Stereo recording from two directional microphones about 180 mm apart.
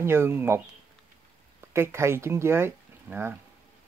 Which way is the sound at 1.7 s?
15° right (ahead or behind).